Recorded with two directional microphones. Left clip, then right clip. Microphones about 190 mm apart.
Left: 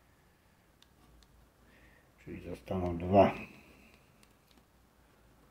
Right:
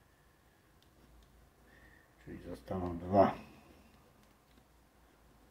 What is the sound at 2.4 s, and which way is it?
Speech, 15° left (ahead or behind).